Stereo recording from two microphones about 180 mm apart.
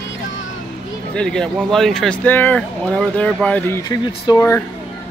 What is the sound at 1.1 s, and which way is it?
Speech, 5° left (ahead or behind).